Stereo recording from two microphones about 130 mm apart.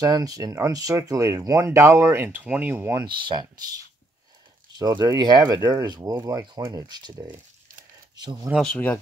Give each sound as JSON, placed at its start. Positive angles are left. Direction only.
{"t": 0.0, "sound": "speech", "side_deg": -30}
{"t": 3.3, "sound": "speech", "side_deg": -35}
{"t": 8.5, "sound": "speech", "side_deg": 10}